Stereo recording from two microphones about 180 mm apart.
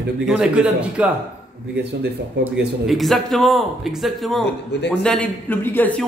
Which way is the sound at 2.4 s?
75° right (ahead or behind).